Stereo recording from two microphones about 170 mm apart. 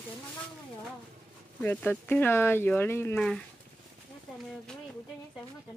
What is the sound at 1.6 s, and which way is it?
Speech, 10° left (ahead or behind).